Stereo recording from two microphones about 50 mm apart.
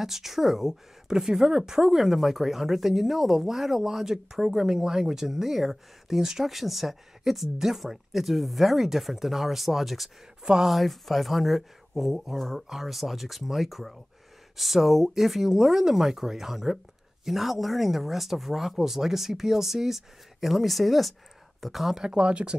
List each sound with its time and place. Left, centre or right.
0.0 s a woman's voice: centre
10.4 s speech: centre
10.7 s a woman's voice: centre
21.9 s speech: centre